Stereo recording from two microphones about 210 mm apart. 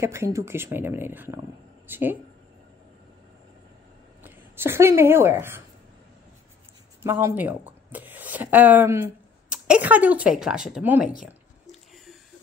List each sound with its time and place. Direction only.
0.0 s speech: 15° right (ahead or behind)
4.2 s speech: 10° right (ahead or behind)
7.0 s speech: 10° right (ahead or behind)